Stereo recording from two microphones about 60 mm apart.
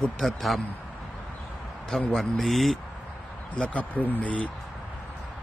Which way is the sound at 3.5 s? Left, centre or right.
Left.